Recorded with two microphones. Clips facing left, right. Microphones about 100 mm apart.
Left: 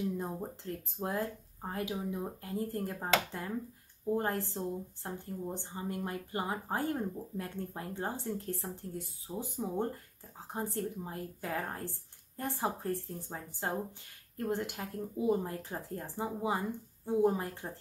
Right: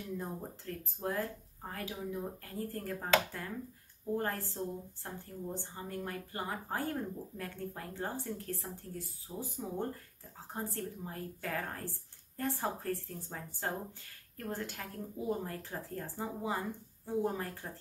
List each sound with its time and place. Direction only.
0.2 s a woman's voice: 20° left (ahead or behind)